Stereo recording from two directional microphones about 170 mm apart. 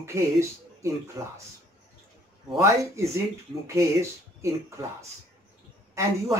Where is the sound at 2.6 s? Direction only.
15° right (ahead or behind).